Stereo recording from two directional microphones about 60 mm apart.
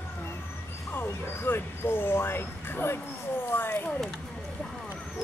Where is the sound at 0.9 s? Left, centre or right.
Left.